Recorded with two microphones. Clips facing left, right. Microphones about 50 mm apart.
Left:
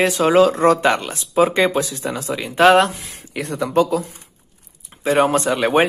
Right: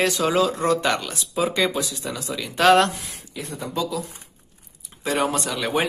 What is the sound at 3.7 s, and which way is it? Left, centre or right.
Speech, left.